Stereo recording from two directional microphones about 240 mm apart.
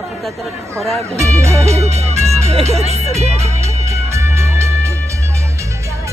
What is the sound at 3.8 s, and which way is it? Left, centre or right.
Music, centre.